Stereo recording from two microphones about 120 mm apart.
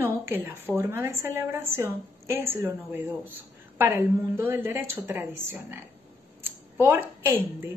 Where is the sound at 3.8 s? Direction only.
20° right (ahead or behind).